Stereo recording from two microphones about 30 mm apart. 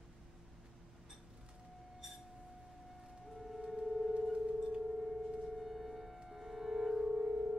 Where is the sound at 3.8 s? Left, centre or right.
Centre.